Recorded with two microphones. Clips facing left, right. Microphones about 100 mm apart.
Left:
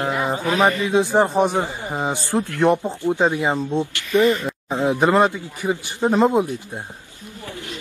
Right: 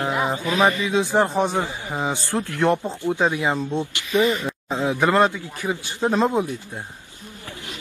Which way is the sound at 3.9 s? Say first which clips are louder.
Left 3 dB; 15° right (ahead or behind).